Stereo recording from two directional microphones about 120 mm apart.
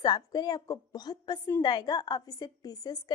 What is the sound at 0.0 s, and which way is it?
A woman's voice, 35° left (ahead or behind).